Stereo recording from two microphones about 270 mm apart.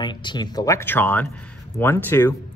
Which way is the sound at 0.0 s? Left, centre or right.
Centre.